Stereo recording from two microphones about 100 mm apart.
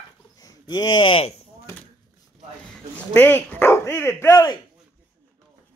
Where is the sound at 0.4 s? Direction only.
40° left (ahead or behind); by 1.3 s 60° left (ahead or behind).